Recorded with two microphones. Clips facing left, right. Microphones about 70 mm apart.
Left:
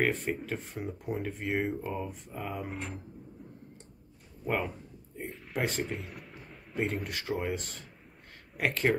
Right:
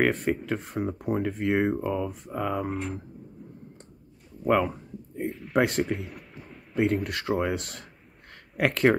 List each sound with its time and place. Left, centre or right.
0.0 s speech: right
2.0 s speech: right
2.7 s speech: centre
5.3 s speech: centre
5.6 s speech: right
5.9 s a sound: centre
6.8 s speech: right